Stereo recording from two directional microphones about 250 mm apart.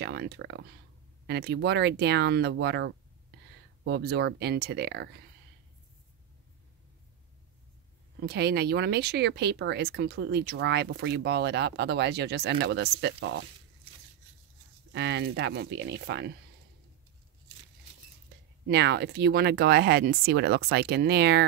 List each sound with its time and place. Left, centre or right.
0.0 s speech: right
8.3 s speech: right
14.9 s speech: right
18.7 s speech: right